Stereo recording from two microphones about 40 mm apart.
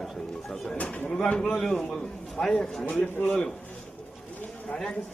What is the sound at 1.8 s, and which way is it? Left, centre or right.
Speech, centre.